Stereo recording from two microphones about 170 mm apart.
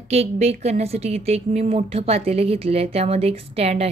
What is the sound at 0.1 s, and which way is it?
A woman's voice, 40° right (ahead or behind).